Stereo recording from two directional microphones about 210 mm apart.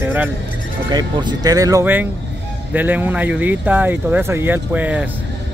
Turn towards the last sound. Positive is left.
turn(degrees=-10)  # may be behind; listen again after turning